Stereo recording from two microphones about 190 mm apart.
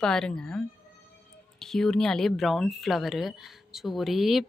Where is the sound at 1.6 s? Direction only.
5° left (ahead or behind).